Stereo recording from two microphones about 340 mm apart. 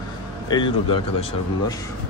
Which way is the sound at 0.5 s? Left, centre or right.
Centre.